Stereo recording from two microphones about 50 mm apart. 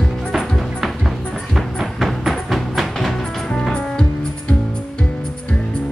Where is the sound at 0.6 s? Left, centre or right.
Centre.